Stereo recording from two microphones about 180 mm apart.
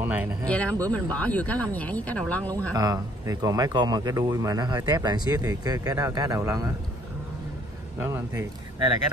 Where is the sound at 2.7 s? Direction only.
20° right (ahead or behind).